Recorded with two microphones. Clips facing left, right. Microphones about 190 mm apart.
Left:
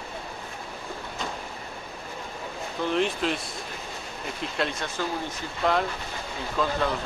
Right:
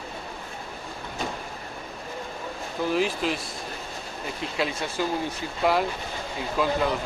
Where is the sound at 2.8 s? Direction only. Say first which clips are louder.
Even; 5° right (ahead or behind).